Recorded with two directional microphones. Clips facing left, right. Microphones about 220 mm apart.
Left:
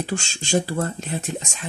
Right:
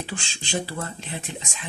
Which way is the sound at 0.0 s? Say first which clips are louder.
Left 7 dB; 45° left (ahead or behind).